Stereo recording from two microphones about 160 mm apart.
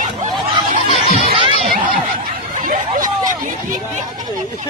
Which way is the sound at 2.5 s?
55° right (ahead or behind).